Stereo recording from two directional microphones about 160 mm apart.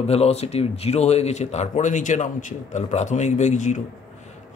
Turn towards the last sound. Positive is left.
turn(degrees=50)  # may be behind; listen again after turning